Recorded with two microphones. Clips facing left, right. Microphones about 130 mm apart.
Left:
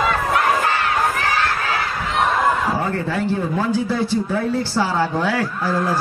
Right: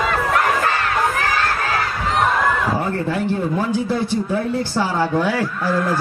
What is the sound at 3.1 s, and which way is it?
A man's voice, 15° right (ahead or behind).